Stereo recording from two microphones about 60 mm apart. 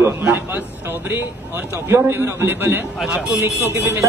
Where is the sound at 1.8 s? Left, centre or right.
Right.